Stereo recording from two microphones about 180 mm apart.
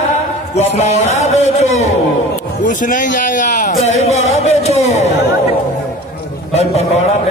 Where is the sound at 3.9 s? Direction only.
35° left (ahead or behind).